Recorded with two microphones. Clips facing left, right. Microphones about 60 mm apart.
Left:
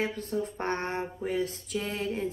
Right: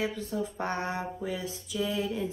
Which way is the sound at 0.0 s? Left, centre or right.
Left.